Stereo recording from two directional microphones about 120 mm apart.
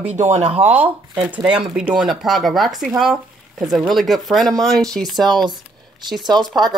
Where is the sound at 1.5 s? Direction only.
5° right (ahead or behind).